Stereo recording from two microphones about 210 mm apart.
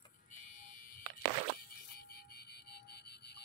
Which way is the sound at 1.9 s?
45° left (ahead or behind).